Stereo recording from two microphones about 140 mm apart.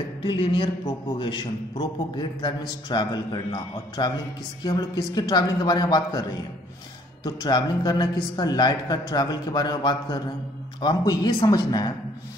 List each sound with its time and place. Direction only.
0.2 s a man's voice: 35° left (ahead or behind)